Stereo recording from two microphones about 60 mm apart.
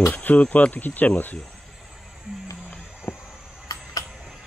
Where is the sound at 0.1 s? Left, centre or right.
Left.